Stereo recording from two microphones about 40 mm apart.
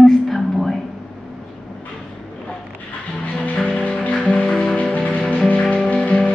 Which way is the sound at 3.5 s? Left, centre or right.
Left.